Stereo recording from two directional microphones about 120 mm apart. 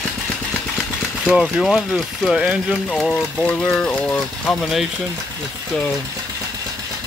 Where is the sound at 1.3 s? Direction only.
5° right (ahead or behind); by 4.2 s 10° left (ahead or behind).